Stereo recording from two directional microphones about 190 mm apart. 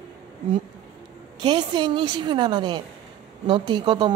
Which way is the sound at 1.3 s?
25° right (ahead or behind).